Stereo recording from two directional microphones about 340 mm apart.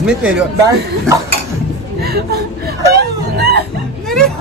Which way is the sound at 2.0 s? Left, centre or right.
Right.